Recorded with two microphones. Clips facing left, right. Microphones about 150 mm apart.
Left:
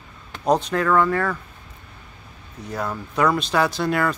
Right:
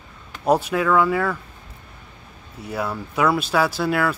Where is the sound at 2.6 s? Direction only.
10° right (ahead or behind).